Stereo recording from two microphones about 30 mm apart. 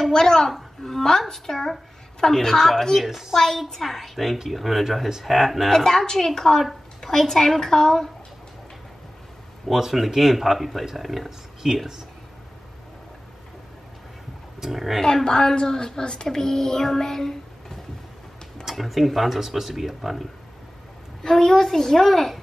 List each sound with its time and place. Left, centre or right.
0.1 s a woman's voice: left
0.5 s a woman's voice: centre
2.5 s a child's voice: centre
3.1 s speech: centre
3.3 s a child's voice: centre
5.9 s a child's voice: centre
9.7 s speech: centre
11.2 s speech: centre
14.6 s speech: centre
15.2 s a woman's voice: left
16.3 s child singing: centre
18.7 s speech: centre
21.2 s a child's voice: centre